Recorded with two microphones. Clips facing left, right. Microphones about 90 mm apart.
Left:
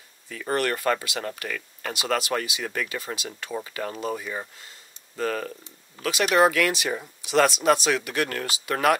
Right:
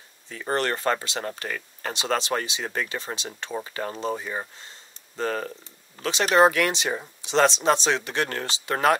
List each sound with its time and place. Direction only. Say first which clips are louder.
0.3 s speech: even; 30° right (ahead or behind)